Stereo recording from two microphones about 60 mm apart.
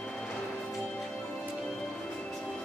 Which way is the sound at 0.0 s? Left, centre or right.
Centre.